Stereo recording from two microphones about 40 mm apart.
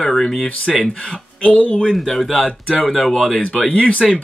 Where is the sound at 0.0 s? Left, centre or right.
Centre.